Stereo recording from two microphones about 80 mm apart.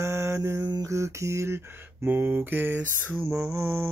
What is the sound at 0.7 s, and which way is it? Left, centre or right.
Mantra, right.